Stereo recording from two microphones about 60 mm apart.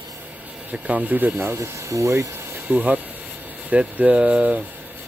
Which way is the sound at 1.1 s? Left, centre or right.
Right.